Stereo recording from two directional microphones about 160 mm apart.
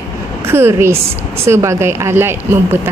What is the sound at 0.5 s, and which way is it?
A woman's voice, 15° right (ahead or behind).